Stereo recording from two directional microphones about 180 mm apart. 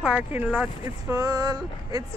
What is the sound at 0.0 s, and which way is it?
Speech, 10° right (ahead or behind).